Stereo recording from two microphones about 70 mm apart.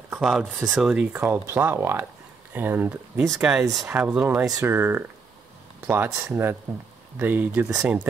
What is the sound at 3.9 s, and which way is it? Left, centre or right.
Speech, centre.